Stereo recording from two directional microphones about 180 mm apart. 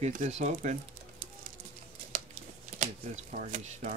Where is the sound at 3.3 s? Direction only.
40° right (ahead or behind).